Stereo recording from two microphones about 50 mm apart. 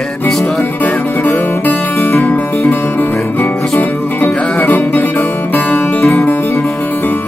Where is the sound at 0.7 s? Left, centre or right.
Left.